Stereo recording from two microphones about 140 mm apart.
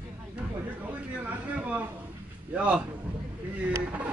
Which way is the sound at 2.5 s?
10° right (ahead or behind).